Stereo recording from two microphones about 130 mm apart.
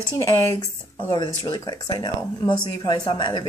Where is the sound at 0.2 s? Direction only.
25° left (ahead or behind).